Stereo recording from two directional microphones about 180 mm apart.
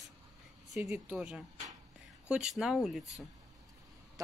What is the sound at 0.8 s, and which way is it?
Speech, 10° right (ahead or behind).